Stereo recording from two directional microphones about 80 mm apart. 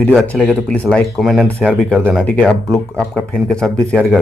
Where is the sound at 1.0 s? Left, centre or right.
Centre.